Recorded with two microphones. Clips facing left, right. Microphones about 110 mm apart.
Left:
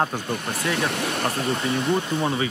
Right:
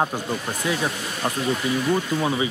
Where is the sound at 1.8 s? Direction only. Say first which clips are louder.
Right 1 dB; 25° left (ahead or behind).